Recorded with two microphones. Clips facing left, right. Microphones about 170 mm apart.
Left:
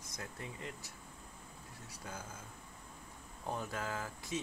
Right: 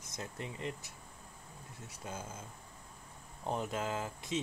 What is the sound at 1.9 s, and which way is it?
Speech, 25° right (ahead or behind).